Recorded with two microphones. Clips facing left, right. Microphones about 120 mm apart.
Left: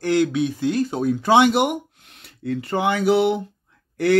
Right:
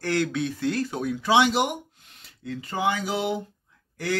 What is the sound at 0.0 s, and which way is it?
Speech, 15° left (ahead or behind).